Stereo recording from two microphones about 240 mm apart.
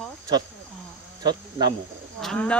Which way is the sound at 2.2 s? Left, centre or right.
Centre.